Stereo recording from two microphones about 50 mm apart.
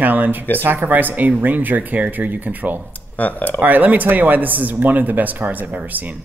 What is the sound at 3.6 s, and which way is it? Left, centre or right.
Speech, right.